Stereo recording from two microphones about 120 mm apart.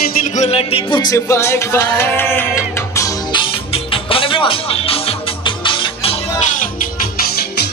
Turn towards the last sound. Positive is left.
turn(degrees=45)  # may be behind; listen again after turning